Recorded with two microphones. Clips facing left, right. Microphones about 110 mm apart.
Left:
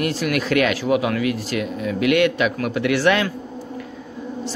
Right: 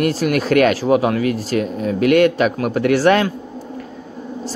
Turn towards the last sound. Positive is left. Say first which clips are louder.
# right 4 dB
turn(degrees=-40)  # may be behind; listen again after turning